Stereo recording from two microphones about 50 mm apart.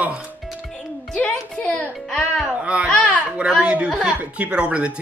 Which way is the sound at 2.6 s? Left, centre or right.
Right.